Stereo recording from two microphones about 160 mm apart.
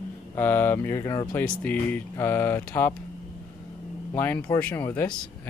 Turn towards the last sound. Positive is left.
turn(degrees=10)  # may be behind; listen again after turning